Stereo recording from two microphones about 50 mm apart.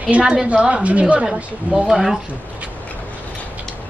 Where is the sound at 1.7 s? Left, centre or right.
Centre.